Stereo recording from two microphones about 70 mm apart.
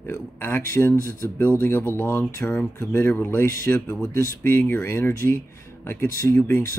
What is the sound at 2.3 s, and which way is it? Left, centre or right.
Speech, centre.